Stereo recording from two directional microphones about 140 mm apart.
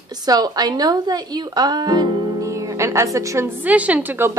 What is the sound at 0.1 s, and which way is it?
A woman's voice, 30° right (ahead or behind).